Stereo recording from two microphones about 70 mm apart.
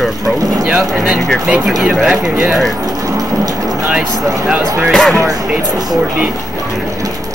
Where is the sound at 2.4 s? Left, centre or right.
Centre.